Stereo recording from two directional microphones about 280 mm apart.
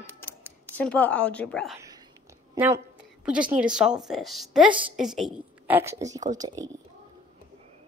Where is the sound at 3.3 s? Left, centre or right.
Centre.